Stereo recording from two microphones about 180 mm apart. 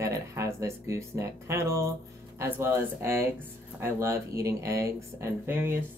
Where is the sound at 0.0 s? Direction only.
15° right (ahead or behind).